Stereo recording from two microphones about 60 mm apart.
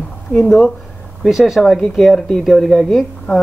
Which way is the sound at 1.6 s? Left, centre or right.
Centre.